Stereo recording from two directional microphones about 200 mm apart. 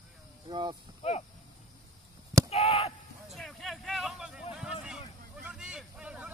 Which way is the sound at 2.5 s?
30° left (ahead or behind).